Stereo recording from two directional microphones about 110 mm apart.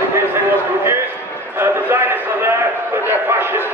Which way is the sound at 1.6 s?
20° right (ahead or behind).